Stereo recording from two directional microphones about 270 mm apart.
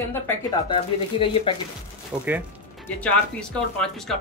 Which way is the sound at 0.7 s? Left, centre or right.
Centre.